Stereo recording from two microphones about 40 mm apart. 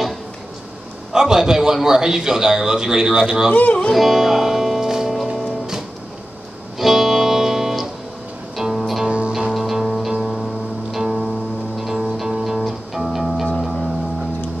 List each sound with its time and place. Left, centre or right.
1.1 s a man's voice: centre
3.9 s music: centre
6.8 s music: centre
9.0 s music: right
9.5 s music: centre